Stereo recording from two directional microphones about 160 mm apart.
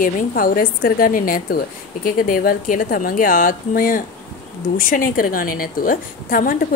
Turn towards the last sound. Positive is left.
turn(degrees=60)  # may be behind; listen again after turning